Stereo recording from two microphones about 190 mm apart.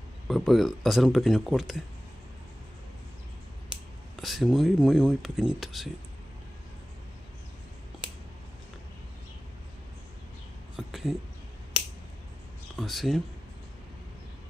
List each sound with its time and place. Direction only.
0.3 s speech: centre (ahead or behind)
4.2 s speech: centre (ahead or behind)
10.8 s a sound: centre (ahead or behind)
12.7 s speech: centre (ahead or behind)